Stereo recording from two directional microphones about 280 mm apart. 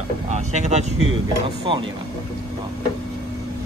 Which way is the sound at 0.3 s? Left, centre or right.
Right.